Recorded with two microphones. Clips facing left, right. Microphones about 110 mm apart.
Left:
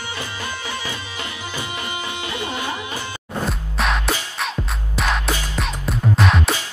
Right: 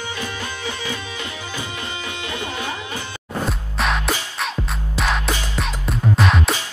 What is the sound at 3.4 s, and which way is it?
Music, centre (ahead or behind).